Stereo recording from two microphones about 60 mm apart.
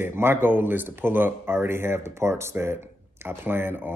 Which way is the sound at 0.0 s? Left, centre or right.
Right.